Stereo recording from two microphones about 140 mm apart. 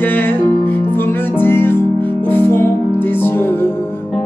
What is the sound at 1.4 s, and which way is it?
Music, 15° left (ahead or behind).